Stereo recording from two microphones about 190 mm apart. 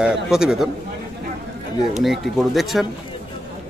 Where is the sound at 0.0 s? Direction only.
5° right (ahead or behind).